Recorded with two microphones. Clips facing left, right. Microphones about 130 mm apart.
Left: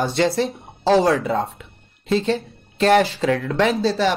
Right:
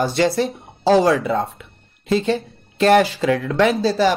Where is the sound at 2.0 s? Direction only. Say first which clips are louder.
Right 1 dB; 10° right (ahead or behind).